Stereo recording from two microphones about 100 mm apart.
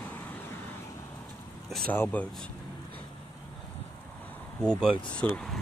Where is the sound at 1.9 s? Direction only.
20° left (ahead or behind).